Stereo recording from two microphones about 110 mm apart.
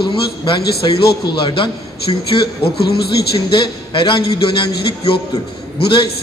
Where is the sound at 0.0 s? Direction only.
50° left (ahead or behind).